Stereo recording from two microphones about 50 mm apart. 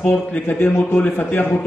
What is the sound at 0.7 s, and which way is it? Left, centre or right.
Speech, left.